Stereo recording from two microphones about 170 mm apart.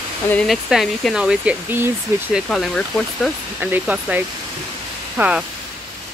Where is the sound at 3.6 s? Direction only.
10° right (ahead or behind).